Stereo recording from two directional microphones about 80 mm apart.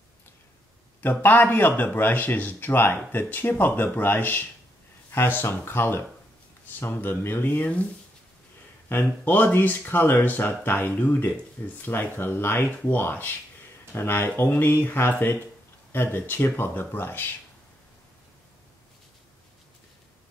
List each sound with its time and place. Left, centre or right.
1.0 s speech: left